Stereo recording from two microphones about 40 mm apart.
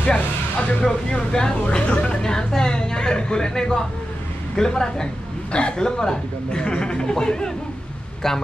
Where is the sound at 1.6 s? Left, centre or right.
Left.